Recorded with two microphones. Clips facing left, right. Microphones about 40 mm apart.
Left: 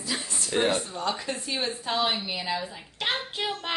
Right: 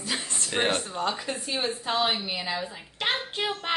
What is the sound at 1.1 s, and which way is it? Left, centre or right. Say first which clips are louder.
A woman's voice: even; centre.